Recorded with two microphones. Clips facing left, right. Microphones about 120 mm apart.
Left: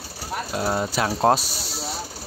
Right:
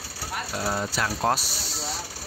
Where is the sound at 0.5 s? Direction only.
20° left (ahead or behind).